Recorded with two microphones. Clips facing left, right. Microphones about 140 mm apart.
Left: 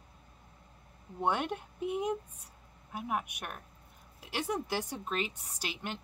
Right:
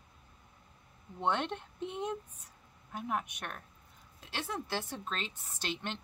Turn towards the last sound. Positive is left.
turn(degrees=5)  # may be behind; listen again after turning